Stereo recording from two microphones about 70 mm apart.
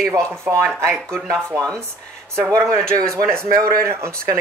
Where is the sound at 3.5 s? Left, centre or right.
Right.